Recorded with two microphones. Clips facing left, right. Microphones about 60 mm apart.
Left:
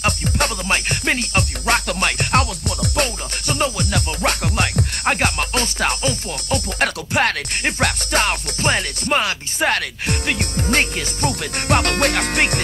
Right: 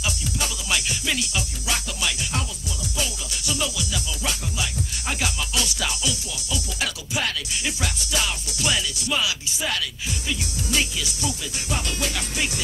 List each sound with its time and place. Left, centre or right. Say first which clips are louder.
0.0 s music: left 8 dB; left